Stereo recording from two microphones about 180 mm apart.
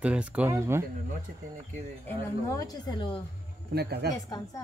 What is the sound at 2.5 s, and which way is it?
Speech, 20° left (ahead or behind).